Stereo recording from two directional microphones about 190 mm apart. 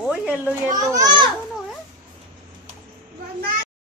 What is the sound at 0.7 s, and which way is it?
Speech, 20° right (ahead or behind).